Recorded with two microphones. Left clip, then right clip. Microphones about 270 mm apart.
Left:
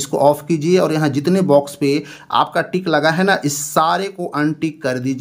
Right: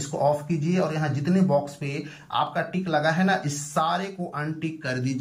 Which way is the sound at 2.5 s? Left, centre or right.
Left.